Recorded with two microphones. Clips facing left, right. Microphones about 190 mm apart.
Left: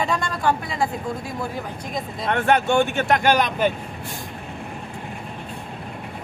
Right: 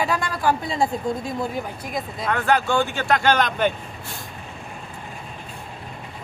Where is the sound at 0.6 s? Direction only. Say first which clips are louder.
Right 2 dB; 25° right (ahead or behind).